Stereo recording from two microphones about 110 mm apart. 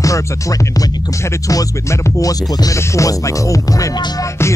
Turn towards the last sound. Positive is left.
turn(degrees=35)  # may be behind; listen again after turning